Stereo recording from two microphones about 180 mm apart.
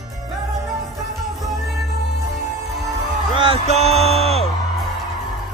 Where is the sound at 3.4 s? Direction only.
35° right (ahead or behind).